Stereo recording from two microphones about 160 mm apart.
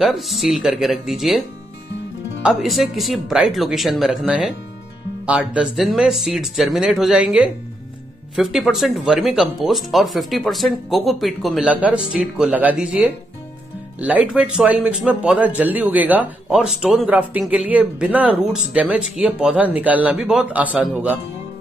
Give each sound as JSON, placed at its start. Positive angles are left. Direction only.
{"t": 0.0, "sound": "speech", "side_deg": 0}
{"t": 2.4, "sound": "speech", "side_deg": 0}